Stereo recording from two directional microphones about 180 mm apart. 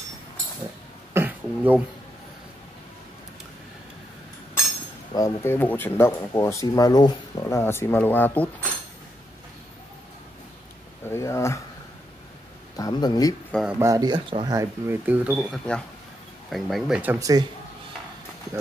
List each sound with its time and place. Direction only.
1.1 s throat clearing: 10° right (ahead or behind)
5.1 s speech: 15° left (ahead or behind)
11.1 s speech: 15° left (ahead or behind)
12.7 s speech: 20° left (ahead or behind)
13.5 s speech: centre (ahead or behind)
13.7 s speech: 20° right (ahead or behind)